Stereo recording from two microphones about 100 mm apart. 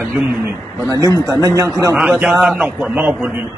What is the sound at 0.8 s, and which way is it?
Speech, 30° right (ahead or behind).